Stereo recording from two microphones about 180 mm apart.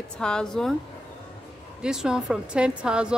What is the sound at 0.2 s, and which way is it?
Speech, 5° left (ahead or behind).